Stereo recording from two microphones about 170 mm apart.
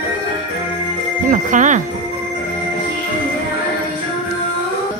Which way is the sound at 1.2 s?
50° right (ahead or behind).